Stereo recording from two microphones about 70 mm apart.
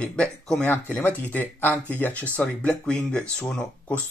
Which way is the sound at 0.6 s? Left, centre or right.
Left.